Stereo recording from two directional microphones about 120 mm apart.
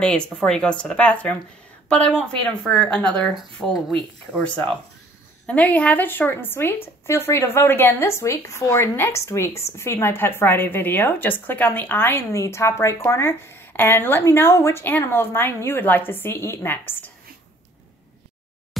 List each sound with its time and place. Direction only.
0.0 s a woman's voice: 10° left (ahead or behind)